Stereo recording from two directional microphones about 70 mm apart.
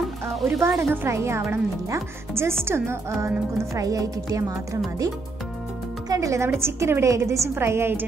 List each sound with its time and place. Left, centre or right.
0.5 s speech: right
6.0 s speech: right